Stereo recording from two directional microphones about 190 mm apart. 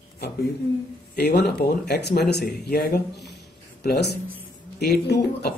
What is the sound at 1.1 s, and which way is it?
Speech, 55° left (ahead or behind).